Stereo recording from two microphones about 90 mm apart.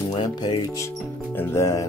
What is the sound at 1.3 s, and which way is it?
Speech, 35° left (ahead or behind).